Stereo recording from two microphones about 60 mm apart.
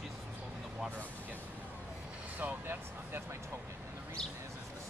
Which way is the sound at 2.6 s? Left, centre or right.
Right.